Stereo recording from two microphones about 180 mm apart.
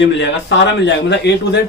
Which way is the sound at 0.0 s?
85° left.